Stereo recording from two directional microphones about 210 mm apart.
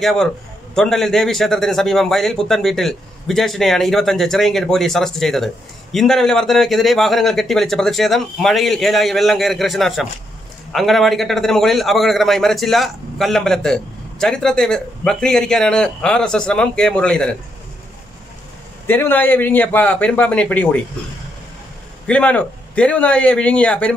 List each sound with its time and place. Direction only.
0.0 s speech: centre (ahead or behind)
18.9 s a man's voice: 10° left (ahead or behind)
22.0 s speech: 5° left (ahead or behind)